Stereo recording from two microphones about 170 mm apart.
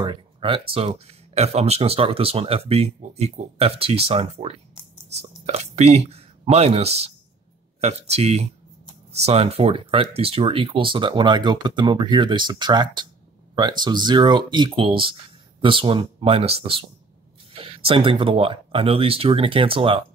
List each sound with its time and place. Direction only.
0.0 s speech: 30° right (ahead or behind)